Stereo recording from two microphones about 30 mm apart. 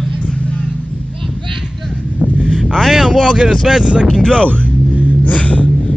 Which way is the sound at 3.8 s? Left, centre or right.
Right.